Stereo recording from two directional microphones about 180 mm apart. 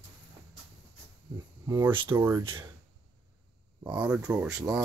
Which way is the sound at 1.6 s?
20° right (ahead or behind).